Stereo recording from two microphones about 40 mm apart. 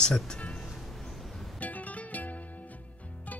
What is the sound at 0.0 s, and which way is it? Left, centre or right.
Speech, centre.